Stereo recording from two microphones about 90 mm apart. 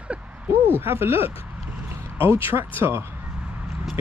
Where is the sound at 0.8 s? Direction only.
25° right (ahead or behind).